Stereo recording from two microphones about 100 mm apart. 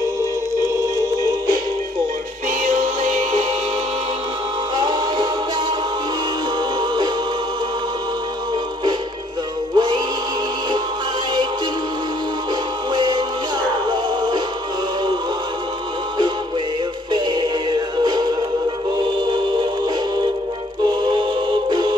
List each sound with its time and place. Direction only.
4.7 s music: 45° right (ahead or behind)
9.8 s music: 45° right (ahead or behind)
12.9 s music: 45° right (ahead or behind)
17.1 s synthetic singing: 45° right (ahead or behind)
20.8 s music: 50° right (ahead or behind)